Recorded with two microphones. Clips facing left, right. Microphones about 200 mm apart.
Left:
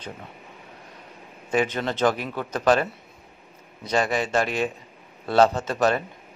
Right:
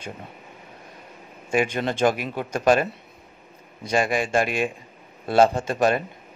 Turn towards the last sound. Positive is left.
turn(degrees=-10)  # may be behind; listen again after turning